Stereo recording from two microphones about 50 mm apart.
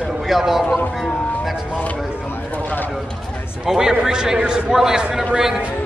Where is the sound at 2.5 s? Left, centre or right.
Left.